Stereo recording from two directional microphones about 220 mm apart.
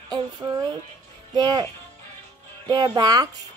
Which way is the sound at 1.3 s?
20° right (ahead or behind).